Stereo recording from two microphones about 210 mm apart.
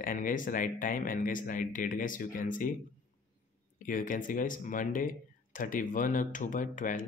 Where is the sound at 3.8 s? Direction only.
40° left (ahead or behind).